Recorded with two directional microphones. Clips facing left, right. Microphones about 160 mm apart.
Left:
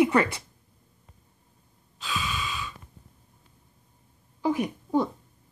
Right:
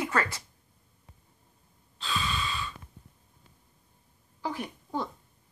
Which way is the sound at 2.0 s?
5° left (ahead or behind).